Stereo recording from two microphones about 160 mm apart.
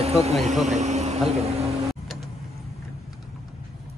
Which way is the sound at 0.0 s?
40° right (ahead or behind).